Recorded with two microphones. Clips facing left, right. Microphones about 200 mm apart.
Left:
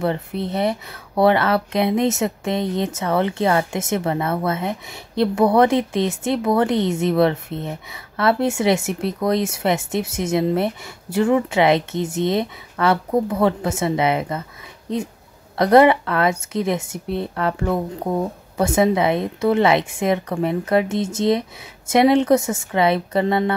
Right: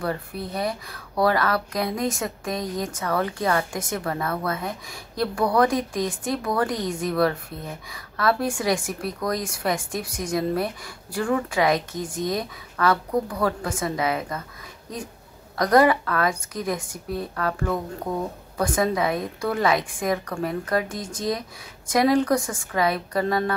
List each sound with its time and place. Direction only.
0.0 s speech: 25° left (ahead or behind)
15.5 s speech: 25° left (ahead or behind)